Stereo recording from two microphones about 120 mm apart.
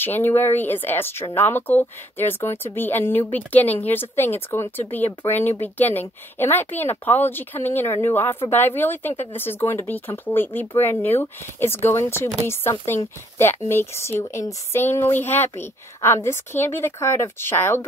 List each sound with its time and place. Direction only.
0.0 s a woman's voice: 15° left (ahead or behind)